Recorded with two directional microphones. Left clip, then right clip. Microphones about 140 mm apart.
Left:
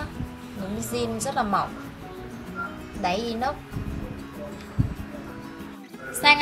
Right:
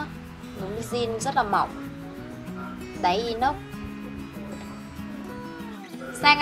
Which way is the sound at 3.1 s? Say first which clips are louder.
Right 3 dB; 15° right (ahead or behind).